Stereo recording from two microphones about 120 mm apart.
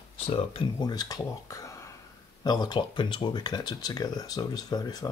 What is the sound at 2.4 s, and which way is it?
Speech, 40° left (ahead or behind).